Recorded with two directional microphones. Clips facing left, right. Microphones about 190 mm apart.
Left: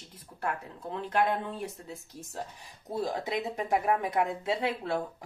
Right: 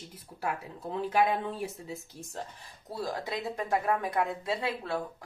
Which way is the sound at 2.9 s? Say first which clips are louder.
Left 3 dB; 20° left (ahead or behind).